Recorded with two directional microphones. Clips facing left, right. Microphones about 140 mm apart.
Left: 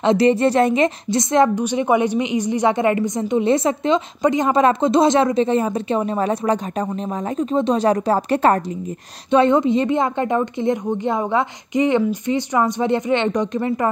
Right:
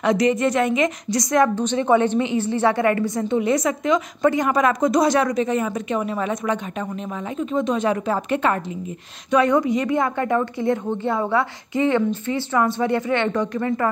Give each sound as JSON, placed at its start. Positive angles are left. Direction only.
{"t": 0.0, "sound": "a woman's voice", "side_deg": 30}
{"t": 1.5, "sound": "a woman's voice", "side_deg": 10}
{"t": 9.3, "sound": "a woman's voice", "side_deg": 25}